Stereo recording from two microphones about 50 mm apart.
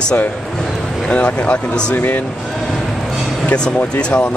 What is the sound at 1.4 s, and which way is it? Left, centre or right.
Speech, left.